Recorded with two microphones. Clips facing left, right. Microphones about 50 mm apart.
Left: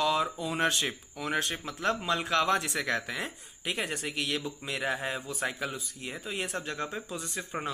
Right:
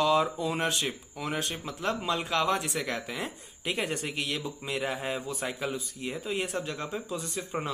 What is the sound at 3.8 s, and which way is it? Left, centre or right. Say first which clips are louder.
Speech: right 3 dB; left.